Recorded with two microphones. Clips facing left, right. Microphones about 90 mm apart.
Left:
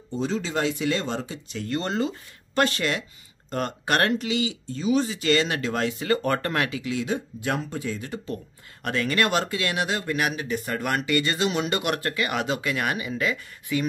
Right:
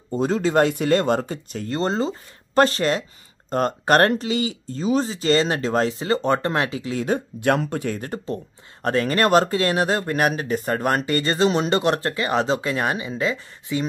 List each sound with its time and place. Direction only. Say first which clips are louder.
0.1 s speech: right 7 dB; 45° right (ahead or behind)
1.7 s speech: right 4 dB; 30° right (ahead or behind); by 8.2 s 55° right (ahead or behind)
8.8 s speech: right 5 dB; 35° right (ahead or behind)